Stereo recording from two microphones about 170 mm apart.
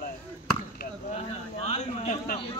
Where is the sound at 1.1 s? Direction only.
40° left (ahead or behind).